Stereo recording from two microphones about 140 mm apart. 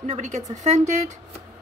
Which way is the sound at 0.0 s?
55° right (ahead or behind).